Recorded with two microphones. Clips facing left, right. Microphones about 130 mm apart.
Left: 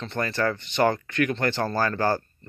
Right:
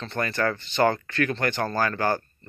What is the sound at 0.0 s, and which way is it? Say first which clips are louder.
Speech: even; 25° left (ahead or behind).